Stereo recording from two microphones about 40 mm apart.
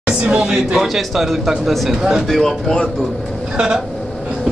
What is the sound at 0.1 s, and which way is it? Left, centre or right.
Speech, right.